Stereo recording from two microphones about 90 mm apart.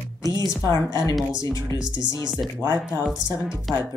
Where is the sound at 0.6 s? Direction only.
35° left (ahead or behind).